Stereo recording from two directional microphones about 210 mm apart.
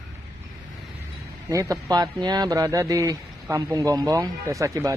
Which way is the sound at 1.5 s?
15° right (ahead or behind).